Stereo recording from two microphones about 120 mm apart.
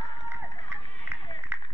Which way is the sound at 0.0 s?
40° left (ahead or behind).